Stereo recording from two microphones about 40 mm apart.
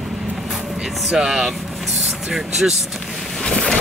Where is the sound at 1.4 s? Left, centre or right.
Centre.